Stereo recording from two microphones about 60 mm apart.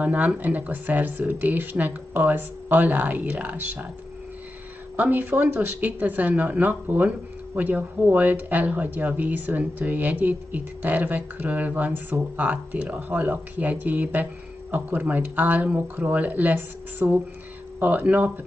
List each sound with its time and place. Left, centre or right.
0.0 s speech: right
4.9 s speech: right